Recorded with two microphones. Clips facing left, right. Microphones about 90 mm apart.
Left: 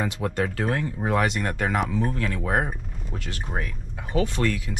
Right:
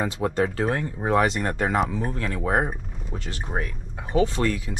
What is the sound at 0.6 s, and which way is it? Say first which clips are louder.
A man's voice: right 1 dB; 30° right (ahead or behind).